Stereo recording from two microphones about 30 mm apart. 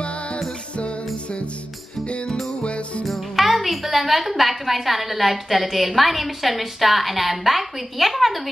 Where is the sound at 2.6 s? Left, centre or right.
Left.